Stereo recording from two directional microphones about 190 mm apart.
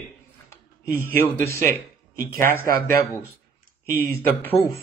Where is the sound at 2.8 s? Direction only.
15° left (ahead or behind).